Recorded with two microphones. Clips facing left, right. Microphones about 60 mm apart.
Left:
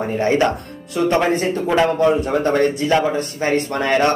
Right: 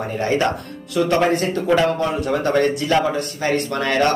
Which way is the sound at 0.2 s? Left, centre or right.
Left.